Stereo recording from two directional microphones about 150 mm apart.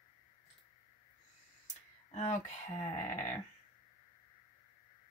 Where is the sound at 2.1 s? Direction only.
50° left (ahead or behind).